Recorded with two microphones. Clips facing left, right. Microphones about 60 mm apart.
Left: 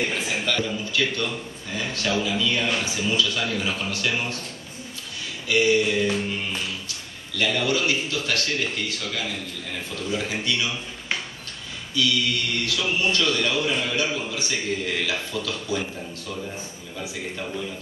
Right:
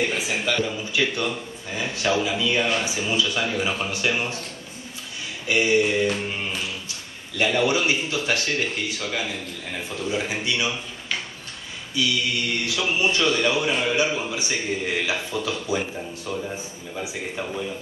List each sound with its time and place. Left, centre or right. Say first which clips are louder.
0.1 s a man's voice: right 1 dB; centre
5.5 s a man's voice: even; right
12.0 s a man's voice: even; right